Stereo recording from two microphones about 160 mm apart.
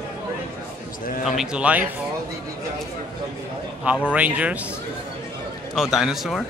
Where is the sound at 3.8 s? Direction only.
10° right (ahead or behind).